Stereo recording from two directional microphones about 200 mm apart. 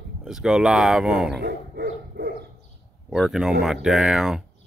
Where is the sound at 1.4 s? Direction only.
55° right (ahead or behind).